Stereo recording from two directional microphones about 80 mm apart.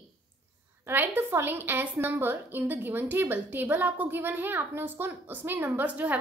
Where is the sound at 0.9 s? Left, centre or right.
Right.